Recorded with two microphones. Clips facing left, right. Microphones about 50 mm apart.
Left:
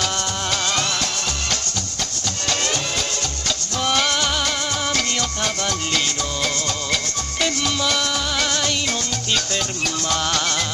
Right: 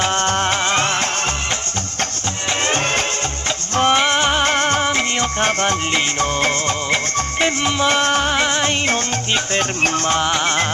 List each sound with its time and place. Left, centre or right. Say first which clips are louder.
0.0 s music: right 7 dB; right
2.6 s music: right 5 dB; right
4.8 s music: right 4 dB; right
8.4 s music: right 4 dB; right
10.2 s music: right 5 dB; right